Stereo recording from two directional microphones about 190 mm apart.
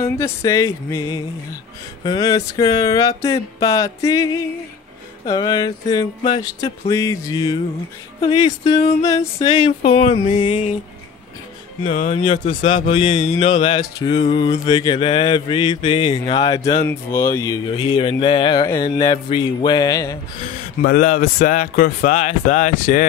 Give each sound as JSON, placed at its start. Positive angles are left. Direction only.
{"t": 0.0, "sound": "music", "side_deg": 15}
{"t": 2.0, "sound": "mantra", "side_deg": 20}
{"t": 9.8, "sound": "a sound", "side_deg": 40}
{"t": 10.4, "sound": "mantra", "side_deg": 25}
{"t": 11.8, "sound": "speech", "side_deg": 45}
{"t": 12.7, "sound": "mantra", "side_deg": 25}
{"t": 20.4, "sound": "speech", "side_deg": 45}